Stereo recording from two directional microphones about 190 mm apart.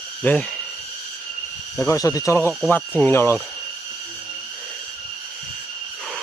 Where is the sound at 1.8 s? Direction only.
15° left (ahead or behind).